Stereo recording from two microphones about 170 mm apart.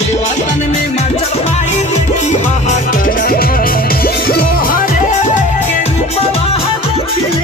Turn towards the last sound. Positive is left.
turn(degrees=40)  # may be behind; listen again after turning